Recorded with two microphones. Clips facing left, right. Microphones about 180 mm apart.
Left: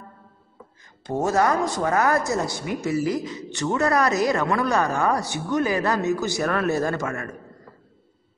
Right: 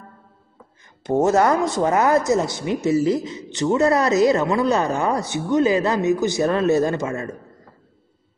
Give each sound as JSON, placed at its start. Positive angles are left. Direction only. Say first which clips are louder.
{"t": 1.2, "sound": "speech", "louder": "right 3 dB", "side_deg": -25}